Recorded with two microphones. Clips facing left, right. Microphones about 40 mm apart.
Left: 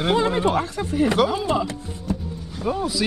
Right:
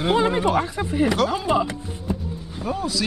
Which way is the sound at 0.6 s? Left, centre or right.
Centre.